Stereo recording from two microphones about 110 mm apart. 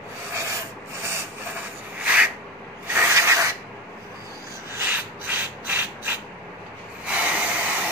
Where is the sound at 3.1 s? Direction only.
25° right (ahead or behind).